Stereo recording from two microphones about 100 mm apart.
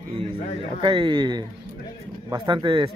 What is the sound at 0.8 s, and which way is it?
Speech, 60° right (ahead or behind).